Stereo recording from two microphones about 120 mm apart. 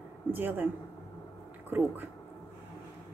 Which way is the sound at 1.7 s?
15° right (ahead or behind).